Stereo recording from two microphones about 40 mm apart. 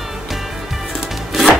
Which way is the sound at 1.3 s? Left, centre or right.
Centre.